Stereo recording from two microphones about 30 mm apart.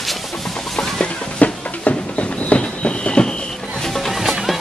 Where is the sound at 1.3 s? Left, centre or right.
Left.